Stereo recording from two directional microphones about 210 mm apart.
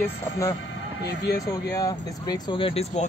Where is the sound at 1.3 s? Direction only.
15° left (ahead or behind).